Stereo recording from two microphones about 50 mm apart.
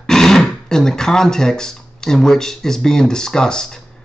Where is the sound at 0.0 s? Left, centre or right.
Centre.